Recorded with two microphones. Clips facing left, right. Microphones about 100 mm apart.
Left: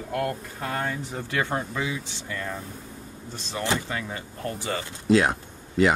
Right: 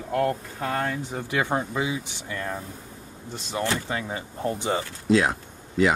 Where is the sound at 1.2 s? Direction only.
15° right (ahead or behind).